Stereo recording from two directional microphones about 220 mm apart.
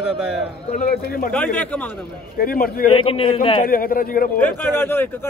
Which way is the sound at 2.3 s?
40° left (ahead or behind).